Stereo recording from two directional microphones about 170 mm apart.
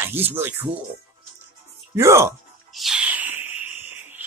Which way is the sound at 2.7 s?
5° right (ahead or behind).